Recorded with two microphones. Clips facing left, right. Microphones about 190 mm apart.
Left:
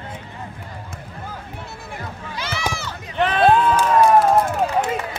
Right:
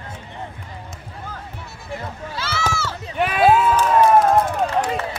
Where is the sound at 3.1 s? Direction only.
10° right (ahead or behind).